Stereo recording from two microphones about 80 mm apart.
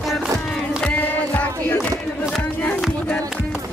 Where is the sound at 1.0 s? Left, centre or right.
Left.